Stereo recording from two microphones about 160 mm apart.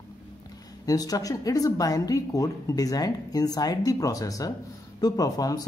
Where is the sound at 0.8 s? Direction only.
25° left (ahead or behind).